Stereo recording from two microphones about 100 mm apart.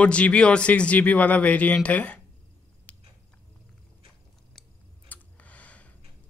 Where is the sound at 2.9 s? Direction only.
15° left (ahead or behind).